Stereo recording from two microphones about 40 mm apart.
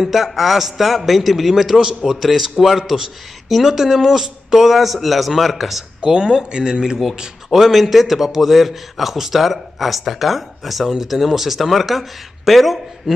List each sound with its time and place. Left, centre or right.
0.0 s a man's voice: centre
6.0 s a man's voice: centre